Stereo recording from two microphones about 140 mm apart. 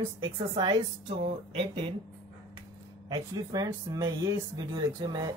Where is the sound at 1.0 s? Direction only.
45° right (ahead or behind).